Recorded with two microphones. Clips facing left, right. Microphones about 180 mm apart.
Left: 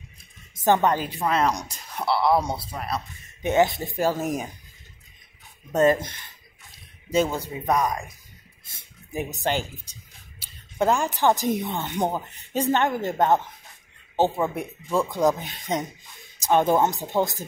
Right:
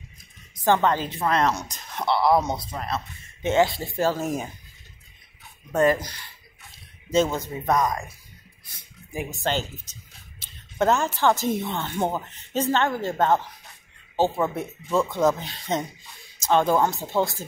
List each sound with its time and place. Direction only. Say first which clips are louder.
0.6 s speech: left 1 dB; 20° left (ahead or behind)
5.7 s speech: left 1 dB; 20° left (ahead or behind)
8.6 s a sound: even; 25° left (ahead or behind)
9.3 s speech: even; 15° left (ahead or behind)